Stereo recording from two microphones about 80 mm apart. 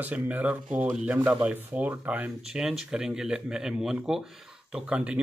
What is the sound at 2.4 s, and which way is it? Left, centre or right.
Speech, centre.